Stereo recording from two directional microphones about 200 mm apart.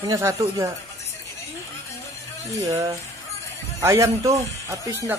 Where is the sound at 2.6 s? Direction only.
15° right (ahead or behind).